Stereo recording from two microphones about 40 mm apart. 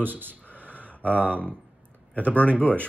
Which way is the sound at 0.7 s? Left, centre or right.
Left.